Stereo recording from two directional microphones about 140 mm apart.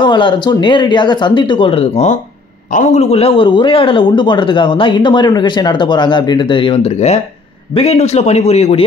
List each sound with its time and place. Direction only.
0.0 s a man's voice: 35° left (ahead or behind)